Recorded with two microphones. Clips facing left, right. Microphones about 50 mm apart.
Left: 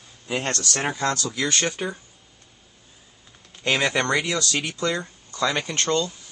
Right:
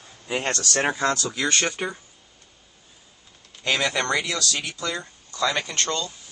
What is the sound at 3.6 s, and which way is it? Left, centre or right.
Speech, left.